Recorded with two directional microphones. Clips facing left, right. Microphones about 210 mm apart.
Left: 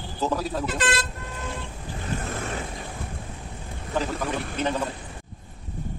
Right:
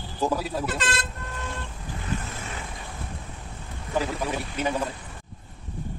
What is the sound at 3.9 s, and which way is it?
Speech, 10° right (ahead or behind).